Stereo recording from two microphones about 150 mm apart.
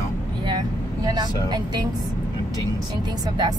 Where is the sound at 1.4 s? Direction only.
25° right (ahead or behind).